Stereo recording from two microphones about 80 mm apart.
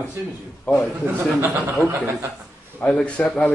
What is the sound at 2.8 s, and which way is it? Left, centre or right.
Speech, centre.